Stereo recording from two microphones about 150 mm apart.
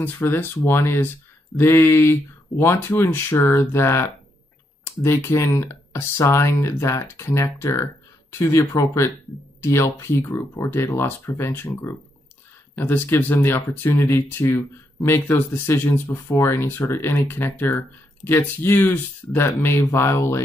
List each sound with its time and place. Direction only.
0.0 s speech: 15° left (ahead or behind)